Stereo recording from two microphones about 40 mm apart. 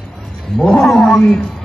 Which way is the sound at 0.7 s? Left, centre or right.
Centre.